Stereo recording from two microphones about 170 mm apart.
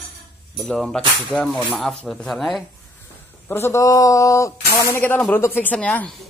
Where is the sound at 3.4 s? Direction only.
15° left (ahead or behind).